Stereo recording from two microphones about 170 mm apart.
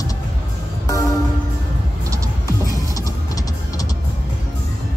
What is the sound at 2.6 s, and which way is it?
Music, 20° left (ahead or behind).